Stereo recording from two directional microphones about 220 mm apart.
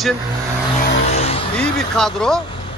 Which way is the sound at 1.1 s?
30° left (ahead or behind).